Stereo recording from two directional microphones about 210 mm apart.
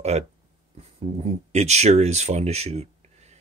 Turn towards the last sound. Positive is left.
turn(degrees=-30)  # may be behind; listen again after turning